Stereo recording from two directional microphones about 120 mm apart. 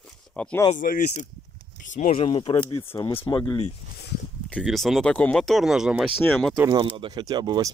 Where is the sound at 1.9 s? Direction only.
60° left (ahead or behind).